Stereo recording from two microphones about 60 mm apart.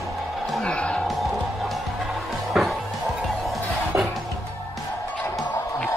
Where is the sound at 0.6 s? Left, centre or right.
Centre.